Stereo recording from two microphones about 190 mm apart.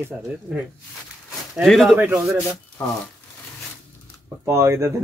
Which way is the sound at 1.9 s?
10° right (ahead or behind).